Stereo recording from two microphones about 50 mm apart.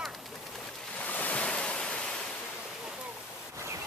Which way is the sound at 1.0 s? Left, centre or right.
Left.